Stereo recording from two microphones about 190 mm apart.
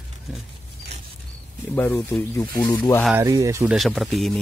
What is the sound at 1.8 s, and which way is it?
Speech, 10° left (ahead or behind).